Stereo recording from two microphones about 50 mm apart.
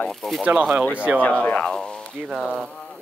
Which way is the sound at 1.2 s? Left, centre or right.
Left.